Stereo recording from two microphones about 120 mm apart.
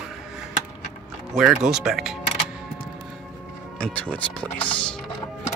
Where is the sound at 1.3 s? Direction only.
5° right (ahead or behind).